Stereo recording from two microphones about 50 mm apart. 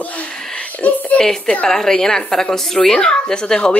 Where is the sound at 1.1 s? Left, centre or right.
Centre.